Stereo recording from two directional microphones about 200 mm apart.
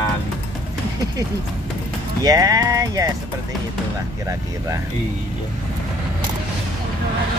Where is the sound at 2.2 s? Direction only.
20° right (ahead or behind).